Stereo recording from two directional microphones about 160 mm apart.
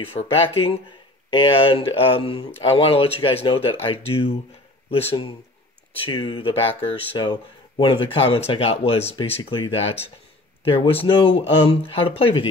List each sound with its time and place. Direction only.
0.0 s speech: 40° left (ahead or behind)
6.0 s speech: 35° left (ahead or behind)